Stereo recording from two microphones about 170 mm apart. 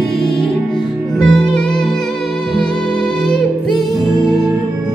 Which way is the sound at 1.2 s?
5° left (ahead or behind).